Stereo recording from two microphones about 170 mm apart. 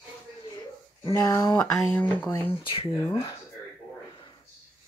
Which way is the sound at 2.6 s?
30° left (ahead or behind).